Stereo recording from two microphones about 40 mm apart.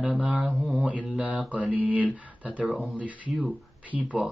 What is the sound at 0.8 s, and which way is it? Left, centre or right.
Speech, right.